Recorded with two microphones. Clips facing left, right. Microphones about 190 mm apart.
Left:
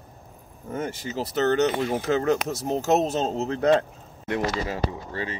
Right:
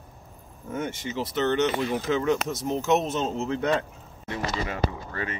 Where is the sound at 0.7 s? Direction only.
35° left (ahead or behind).